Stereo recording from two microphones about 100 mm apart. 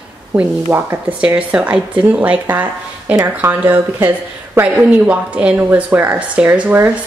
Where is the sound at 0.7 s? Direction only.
20° right (ahead or behind).